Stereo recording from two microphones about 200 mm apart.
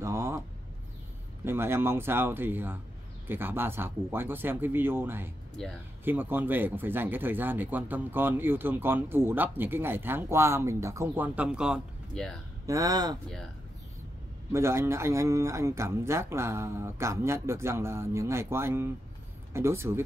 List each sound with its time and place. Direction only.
0.0 s a sound: 15° right (ahead or behind)
1.4 s speech: 10° right (ahead or behind)
5.6 s speech: centre (ahead or behind)
6.0 s speech: 10° right (ahead or behind)
12.6 s speech: 15° right (ahead or behind)
14.5 s speech: 15° right (ahead or behind)